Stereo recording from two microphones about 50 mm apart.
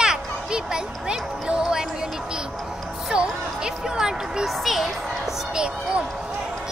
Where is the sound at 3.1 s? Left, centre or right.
Centre.